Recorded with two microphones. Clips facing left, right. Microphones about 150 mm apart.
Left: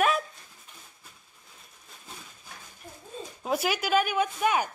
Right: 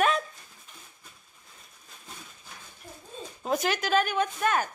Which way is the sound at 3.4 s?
5° left (ahead or behind).